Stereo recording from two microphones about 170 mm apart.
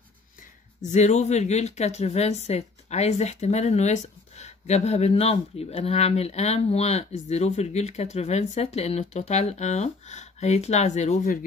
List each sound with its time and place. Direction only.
0.8 s speech: 40° left (ahead or behind)